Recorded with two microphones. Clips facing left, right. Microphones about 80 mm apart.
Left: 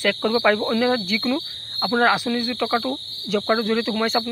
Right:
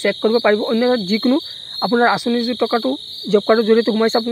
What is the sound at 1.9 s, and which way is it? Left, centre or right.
Speech, centre.